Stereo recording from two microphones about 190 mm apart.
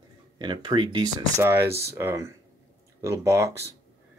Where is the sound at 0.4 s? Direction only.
25° right (ahead or behind).